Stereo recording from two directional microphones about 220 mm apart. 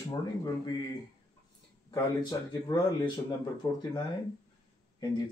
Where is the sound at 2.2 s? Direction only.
20° left (ahead or behind).